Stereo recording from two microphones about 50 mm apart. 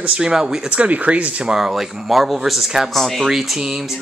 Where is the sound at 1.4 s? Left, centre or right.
Centre.